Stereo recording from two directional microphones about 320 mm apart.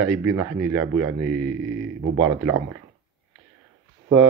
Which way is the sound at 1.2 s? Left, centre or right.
Right.